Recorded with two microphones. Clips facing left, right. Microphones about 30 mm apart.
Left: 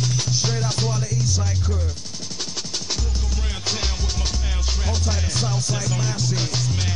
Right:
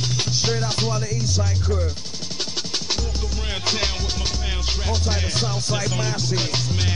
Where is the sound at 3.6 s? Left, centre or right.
Right.